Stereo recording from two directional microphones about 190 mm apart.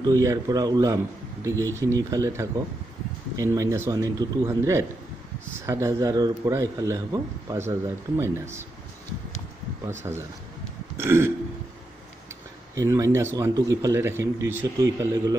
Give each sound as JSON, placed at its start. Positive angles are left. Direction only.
{"t": 0.0, "sound": "a man's voice", "side_deg": -15}
{"t": 9.8, "sound": "a man's voice", "side_deg": -15}
{"t": 12.7, "sound": "a man's voice", "side_deg": -15}